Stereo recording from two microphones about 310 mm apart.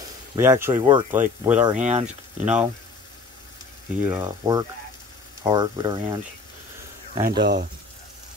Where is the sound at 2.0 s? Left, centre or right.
Centre.